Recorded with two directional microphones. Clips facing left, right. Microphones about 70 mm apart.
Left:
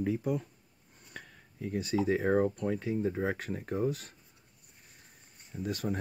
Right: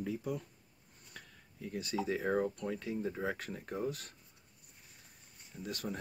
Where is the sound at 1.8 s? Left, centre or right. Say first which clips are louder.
Left 6 dB; left.